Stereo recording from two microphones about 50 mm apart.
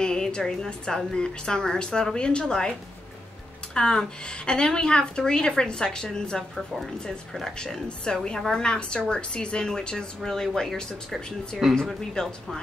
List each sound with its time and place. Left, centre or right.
0.0 s a woman's voice: centre
3.7 s a woman's voice: centre
7.5 s a woman's voice: centre